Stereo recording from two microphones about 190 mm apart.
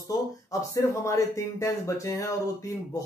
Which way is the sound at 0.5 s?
15° left (ahead or behind).